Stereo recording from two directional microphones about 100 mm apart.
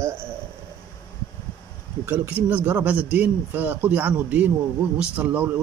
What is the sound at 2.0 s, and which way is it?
A man's voice, 20° right (ahead or behind).